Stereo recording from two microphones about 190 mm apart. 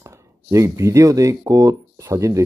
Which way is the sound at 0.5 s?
15° right (ahead or behind).